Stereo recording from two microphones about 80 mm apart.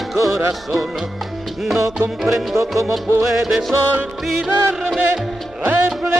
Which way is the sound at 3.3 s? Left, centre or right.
Centre.